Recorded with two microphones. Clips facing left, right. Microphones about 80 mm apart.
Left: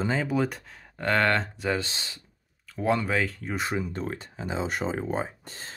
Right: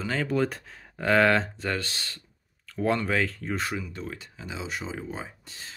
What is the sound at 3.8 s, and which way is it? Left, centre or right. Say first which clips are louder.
Speech: left 5 dB; left.